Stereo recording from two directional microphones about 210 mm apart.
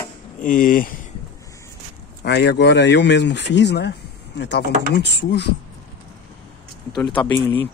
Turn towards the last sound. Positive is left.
turn(degrees=10)  # may be behind; listen again after turning